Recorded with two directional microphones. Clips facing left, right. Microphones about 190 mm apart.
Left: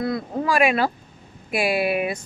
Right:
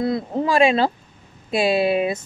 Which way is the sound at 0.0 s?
25° right (ahead or behind).